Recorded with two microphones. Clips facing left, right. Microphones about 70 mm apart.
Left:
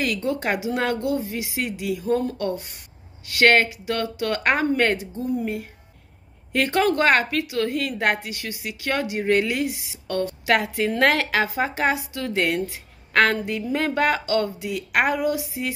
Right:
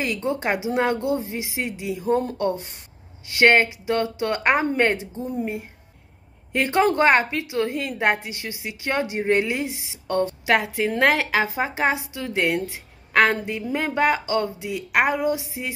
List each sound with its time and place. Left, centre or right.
0.0 s a woman's voice: right